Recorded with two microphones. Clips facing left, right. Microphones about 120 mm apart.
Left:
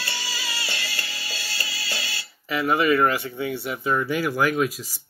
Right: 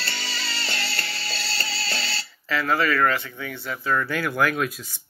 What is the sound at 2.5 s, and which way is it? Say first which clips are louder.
Speech: left 2 dB; 15° left (ahead or behind).